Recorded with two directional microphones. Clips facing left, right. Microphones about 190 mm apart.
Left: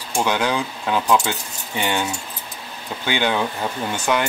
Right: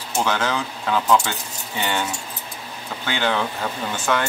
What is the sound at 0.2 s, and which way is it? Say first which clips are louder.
Speech: left 2 dB; 15° left (ahead or behind).